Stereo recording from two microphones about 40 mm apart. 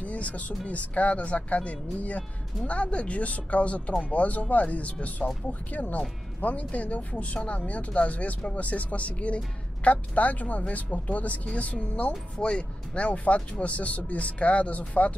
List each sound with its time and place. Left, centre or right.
0.0 s speech: left